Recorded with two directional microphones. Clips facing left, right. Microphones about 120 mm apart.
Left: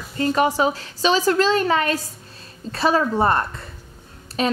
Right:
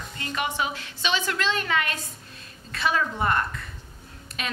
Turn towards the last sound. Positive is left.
turn(degrees=35)  # may be behind; listen again after turning